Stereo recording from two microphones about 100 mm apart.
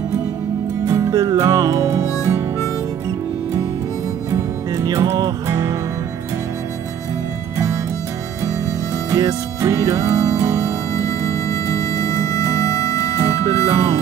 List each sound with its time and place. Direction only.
0.8 s music: 30° right (ahead or behind)
4.3 s music: 30° right (ahead or behind)
9.1 s music: 30° right (ahead or behind)
11.0 s music: 30° left (ahead or behind)
13.2 s music: 35° right (ahead or behind)